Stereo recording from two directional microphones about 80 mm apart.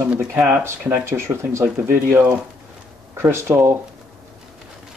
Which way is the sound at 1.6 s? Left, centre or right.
Right.